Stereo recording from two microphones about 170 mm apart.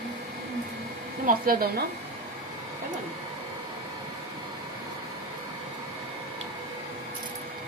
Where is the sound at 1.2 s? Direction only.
55° right (ahead or behind).